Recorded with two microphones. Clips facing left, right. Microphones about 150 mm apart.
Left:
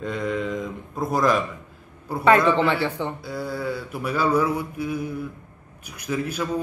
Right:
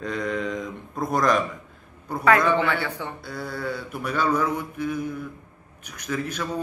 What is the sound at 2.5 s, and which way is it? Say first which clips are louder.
Speech: left 2 dB; 25° left (ahead or behind).